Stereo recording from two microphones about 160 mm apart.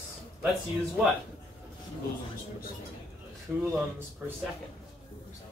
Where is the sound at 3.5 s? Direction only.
15° right (ahead or behind).